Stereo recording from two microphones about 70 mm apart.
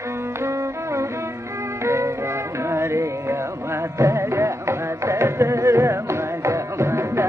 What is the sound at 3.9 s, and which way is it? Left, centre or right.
Carnatic music, right.